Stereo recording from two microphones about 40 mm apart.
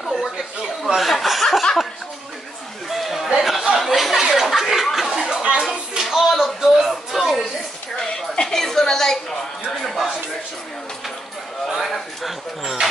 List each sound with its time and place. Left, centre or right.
0.0 s chuckle: centre
0.9 s speech: centre
2.9 s chatter: centre
3.6 s a sound: centre
8.0 s music: centre
11.6 s a sound: centre